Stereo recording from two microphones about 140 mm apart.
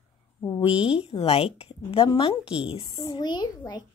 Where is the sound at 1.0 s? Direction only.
45° left (ahead or behind).